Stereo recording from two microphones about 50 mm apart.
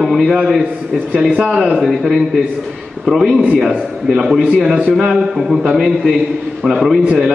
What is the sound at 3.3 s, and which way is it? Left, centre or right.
Speech, right.